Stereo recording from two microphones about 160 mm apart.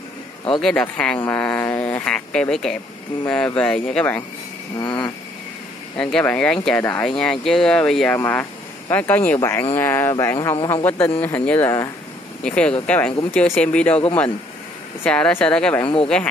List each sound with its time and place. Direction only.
0.6 s speech: 5° left (ahead or behind)
4.7 s vehicle: 25° left (ahead or behind)
5.9 s speech: 5° left (ahead or behind)
7.1 s speech: 5° left (ahead or behind)
12.4 s speech: 5° left (ahead or behind)
15.0 s speech: 5° left (ahead or behind)
15.8 s speech: 30° left (ahead or behind)